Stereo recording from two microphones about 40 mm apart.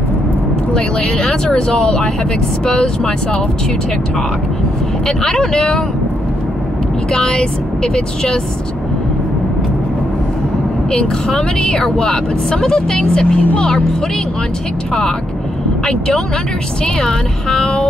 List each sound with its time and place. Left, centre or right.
0.7 s speech: centre
5.0 s speech: centre
7.1 s speech: centre
10.9 s speech: centre
17.5 s speech: centre